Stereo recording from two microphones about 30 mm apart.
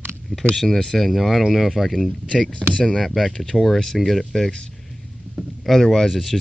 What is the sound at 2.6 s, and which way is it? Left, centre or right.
Speech, left.